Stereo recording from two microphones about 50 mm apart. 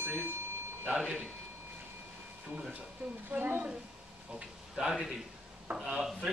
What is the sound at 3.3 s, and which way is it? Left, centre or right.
Speech, right.